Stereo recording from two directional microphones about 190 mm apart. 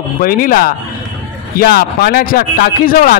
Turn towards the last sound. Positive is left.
turn(degrees=50)  # may be behind; listen again after turning